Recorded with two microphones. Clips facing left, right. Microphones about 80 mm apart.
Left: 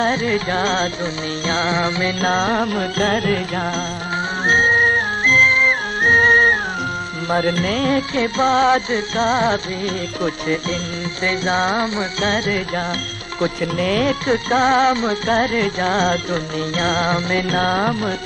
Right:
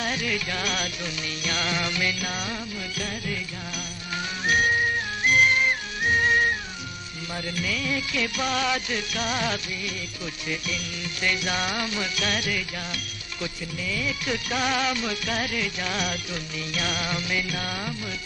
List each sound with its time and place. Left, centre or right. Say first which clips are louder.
0.0 s music: left 10 dB; left
4.5 s music: left 7 dB; left
13.4 s speech: left 14 dB; left
14.2 s music: left 11 dB; left